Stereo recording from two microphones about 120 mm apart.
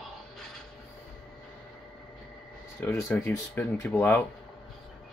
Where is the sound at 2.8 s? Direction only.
20° left (ahead or behind).